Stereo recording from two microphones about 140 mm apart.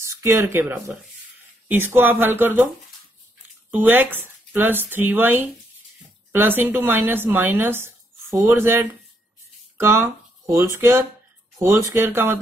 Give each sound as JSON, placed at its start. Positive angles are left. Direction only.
{"t": 0.0, "sound": "speech", "side_deg": -20}
{"t": 3.7, "sound": "speech", "side_deg": -15}